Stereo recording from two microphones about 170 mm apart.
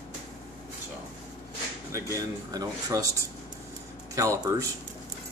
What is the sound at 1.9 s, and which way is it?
Speech, 20° right (ahead or behind).